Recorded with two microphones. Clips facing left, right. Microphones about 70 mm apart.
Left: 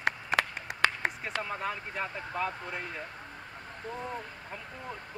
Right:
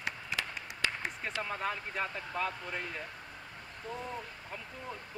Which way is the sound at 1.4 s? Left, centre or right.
Centre.